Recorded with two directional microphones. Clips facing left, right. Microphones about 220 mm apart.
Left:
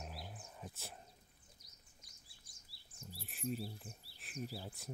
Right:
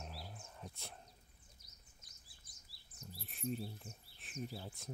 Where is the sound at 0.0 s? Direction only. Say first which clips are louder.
Left 1 dB; centre (ahead or behind).